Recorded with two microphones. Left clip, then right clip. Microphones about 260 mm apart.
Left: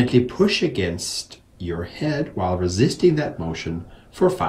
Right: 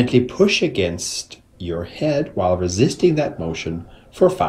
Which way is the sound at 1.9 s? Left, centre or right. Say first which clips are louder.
Right 7 dB; left.